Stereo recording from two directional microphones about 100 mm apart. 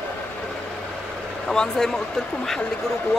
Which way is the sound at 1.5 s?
5° left (ahead or behind).